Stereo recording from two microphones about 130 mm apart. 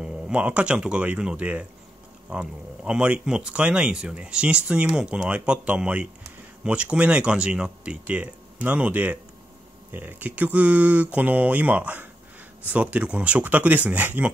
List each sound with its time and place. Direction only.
0.0 s speech: 10° right (ahead or behind)